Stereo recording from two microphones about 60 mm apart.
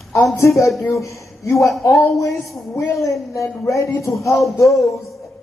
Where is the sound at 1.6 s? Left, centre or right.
Left.